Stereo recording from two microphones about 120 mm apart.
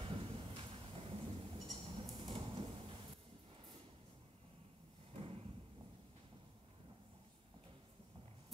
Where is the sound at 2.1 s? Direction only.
50° right (ahead or behind).